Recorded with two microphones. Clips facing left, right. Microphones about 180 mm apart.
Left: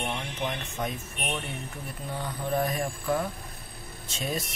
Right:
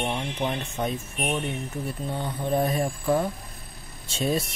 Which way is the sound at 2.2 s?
25° right (ahead or behind).